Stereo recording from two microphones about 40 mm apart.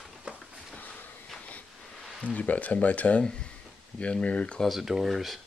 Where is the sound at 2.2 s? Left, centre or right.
Left.